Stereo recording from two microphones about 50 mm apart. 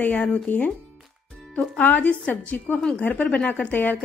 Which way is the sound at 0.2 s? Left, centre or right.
Left.